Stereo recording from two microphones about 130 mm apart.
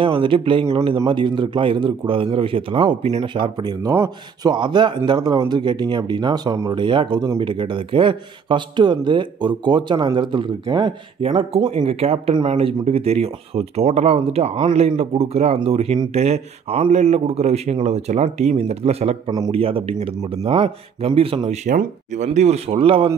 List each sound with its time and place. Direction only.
0.0 s speech: 40° right (ahead or behind)
3.8 s speech: 25° right (ahead or behind)
11.2 s speech: 45° right (ahead or behind)
21.6 s speech: 80° right; by 23.1 s 45° right (ahead or behind)